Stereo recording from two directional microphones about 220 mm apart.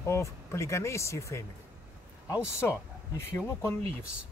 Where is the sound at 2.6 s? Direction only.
10° left (ahead or behind).